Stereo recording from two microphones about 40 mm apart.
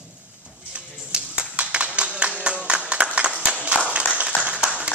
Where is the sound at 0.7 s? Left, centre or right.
Right.